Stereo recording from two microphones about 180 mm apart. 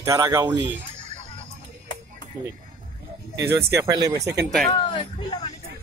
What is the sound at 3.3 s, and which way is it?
Speech, 15° right (ahead or behind).